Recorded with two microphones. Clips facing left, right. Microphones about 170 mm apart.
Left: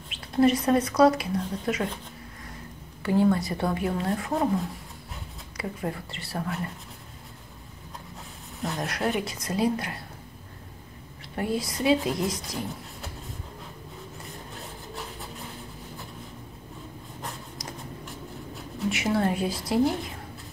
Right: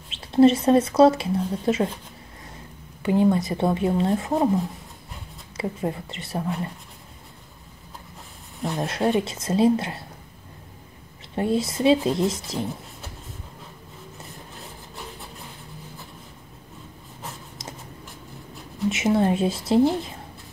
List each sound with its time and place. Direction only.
0.1 s speech: 25° right (ahead or behind)
3.0 s speech: 20° right (ahead or behind)
5.6 s speech: 25° right (ahead or behind)
8.7 s speech: 25° right (ahead or behind)
11.3 s speech: 25° right (ahead or behind)
18.9 s speech: 20° right (ahead or behind)